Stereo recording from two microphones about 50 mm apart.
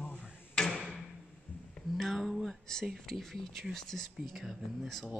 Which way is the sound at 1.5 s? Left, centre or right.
Left.